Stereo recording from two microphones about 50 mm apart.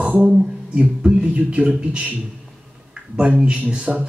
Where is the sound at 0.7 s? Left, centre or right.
Right.